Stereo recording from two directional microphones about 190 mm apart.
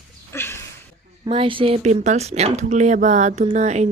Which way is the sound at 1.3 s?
30° right (ahead or behind).